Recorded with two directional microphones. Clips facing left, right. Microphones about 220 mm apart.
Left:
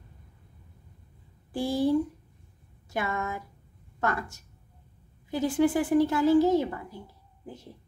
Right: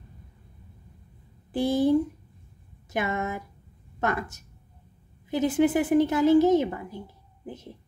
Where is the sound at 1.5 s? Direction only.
20° right (ahead or behind).